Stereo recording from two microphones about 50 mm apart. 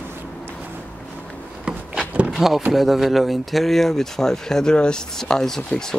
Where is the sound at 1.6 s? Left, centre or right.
Right.